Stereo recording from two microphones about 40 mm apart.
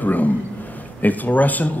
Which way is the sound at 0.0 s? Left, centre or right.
Left.